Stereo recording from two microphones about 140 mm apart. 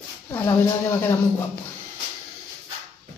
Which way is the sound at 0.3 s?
15° left (ahead or behind).